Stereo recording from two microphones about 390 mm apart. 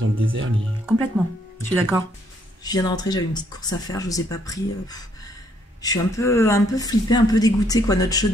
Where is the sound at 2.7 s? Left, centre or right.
Centre.